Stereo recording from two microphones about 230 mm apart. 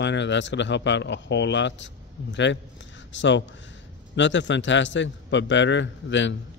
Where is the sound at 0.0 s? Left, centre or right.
Left.